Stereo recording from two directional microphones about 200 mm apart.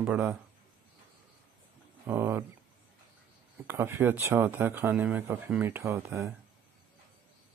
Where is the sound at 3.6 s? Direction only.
10° right (ahead or behind).